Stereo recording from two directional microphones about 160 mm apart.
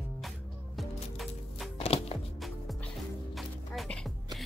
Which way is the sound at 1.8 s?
40° left (ahead or behind).